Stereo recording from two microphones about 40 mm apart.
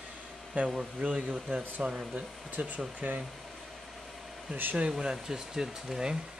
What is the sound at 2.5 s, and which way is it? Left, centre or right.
Speech, right.